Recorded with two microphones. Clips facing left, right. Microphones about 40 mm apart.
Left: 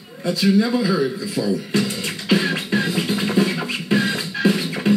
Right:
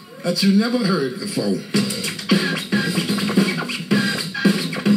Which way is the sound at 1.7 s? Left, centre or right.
Left.